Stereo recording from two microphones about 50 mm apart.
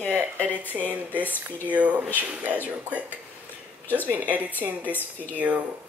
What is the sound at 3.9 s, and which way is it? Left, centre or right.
Speech, left.